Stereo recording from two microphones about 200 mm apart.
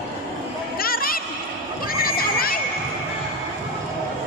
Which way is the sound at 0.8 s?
45° left (ahead or behind).